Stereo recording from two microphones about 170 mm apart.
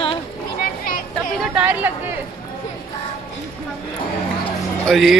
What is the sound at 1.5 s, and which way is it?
Chatter, 10° right (ahead or behind).